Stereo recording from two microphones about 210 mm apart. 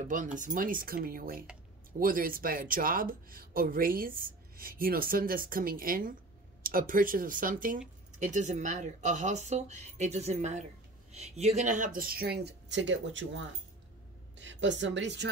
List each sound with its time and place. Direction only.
0.1 s a woman's voice: 40° right (ahead or behind); by 15.2 s 55° right (ahead or behind)